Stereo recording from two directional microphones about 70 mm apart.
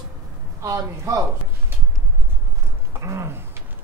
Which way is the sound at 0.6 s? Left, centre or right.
Right.